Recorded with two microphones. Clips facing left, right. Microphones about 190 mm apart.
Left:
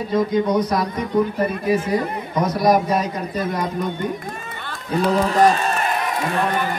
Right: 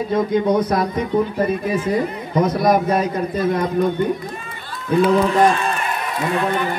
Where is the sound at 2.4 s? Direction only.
55° right (ahead or behind).